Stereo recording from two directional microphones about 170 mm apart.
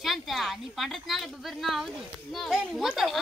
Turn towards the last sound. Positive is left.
turn(degrees=0)  # may be behind; listen again after turning